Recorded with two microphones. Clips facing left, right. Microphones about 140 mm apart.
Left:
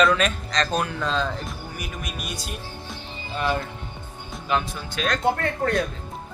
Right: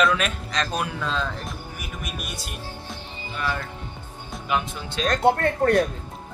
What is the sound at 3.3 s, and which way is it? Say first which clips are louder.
Music: left 4 dB; 25° left (ahead or behind).